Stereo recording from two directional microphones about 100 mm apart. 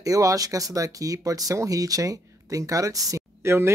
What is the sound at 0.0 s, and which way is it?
Speech, 35° right (ahead or behind).